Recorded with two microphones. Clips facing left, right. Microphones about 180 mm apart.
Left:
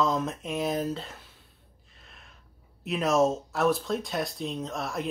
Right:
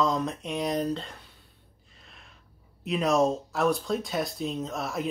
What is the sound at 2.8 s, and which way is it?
Speech, centre (ahead or behind).